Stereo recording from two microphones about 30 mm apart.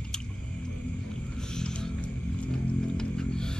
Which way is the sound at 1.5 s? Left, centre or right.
Left.